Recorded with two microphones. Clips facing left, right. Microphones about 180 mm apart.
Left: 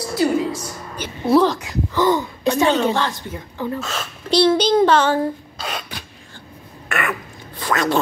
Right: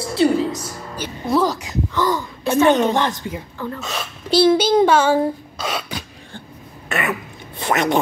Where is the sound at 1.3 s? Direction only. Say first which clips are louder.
Left 3 dB; 5° right (ahead or behind).